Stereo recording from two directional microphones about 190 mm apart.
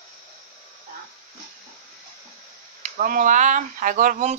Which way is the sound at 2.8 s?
45° right (ahead or behind).